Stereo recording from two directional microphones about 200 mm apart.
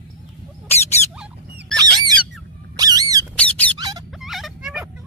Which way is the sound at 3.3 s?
5° left (ahead or behind).